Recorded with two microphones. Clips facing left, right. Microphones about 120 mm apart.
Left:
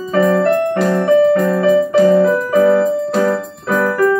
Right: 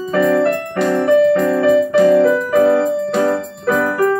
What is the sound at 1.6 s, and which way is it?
Keyboard, 50° right (ahead or behind).